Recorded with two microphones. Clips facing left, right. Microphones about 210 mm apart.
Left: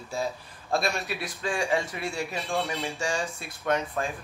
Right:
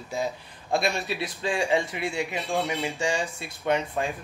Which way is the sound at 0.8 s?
Centre (ahead or behind).